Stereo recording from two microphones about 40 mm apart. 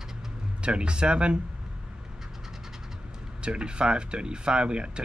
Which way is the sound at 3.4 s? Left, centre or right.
Right.